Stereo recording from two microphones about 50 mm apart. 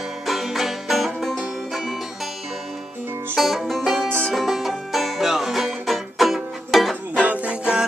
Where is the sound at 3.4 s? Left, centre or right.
Centre.